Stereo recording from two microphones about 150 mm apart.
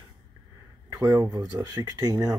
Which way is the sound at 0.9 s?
20° right (ahead or behind).